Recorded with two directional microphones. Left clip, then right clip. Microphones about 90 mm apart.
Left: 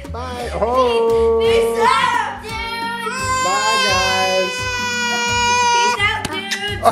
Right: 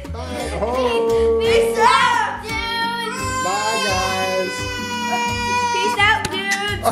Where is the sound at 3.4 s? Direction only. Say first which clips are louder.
Left 4 dB; 15° left (ahead or behind).